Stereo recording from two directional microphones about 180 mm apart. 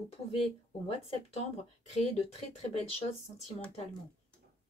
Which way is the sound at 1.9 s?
35° left (ahead or behind).